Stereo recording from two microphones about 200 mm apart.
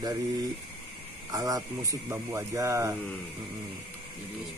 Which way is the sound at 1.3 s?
15° right (ahead or behind).